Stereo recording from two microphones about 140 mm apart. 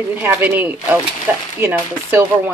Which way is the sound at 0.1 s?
15° right (ahead or behind).